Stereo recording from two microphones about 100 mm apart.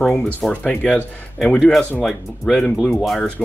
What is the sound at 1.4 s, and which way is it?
Speech, 5° left (ahead or behind).